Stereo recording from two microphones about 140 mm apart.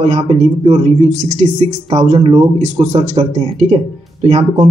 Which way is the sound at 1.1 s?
60° right (ahead or behind).